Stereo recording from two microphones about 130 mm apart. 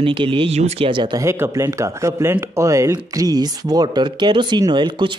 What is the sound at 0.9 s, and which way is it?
Speech, 35° right (ahead or behind).